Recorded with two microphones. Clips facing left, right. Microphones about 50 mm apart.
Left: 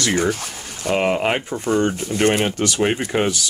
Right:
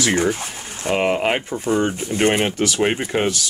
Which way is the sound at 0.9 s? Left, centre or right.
Centre.